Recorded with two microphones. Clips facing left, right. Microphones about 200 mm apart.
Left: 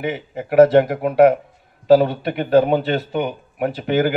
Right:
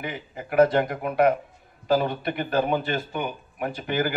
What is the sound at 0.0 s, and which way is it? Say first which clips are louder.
Speech: left 9 dB; 75° left (ahead or behind).